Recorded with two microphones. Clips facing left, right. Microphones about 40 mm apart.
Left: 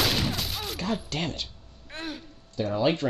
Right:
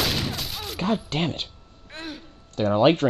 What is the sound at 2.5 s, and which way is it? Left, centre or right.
Speech, right.